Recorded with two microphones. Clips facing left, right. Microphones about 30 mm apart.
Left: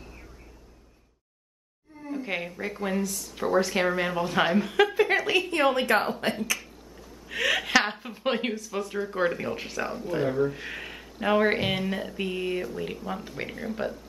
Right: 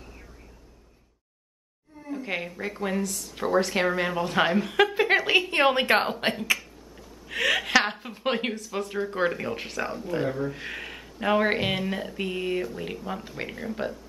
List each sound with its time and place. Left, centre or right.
2.0 s speech: centre
4.9 s a woman's voice: centre
5.5 s a woman's voice: right
7.2 s a woman's voice: centre